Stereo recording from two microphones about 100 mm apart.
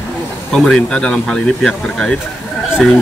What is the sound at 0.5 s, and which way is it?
Speech, 5° left (ahead or behind).